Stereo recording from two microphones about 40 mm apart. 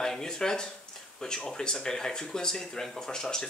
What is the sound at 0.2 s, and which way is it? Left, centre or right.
Speech, centre.